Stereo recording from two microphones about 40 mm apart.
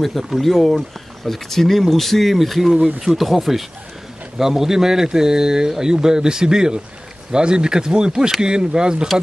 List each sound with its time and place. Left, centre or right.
0.0 s a man's voice: centre; by 9.0 s right